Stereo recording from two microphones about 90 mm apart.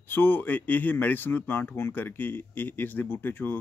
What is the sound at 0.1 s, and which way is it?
Speech, 25° left (ahead or behind).